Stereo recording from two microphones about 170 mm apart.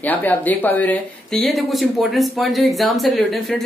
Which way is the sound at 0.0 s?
10° left (ahead or behind).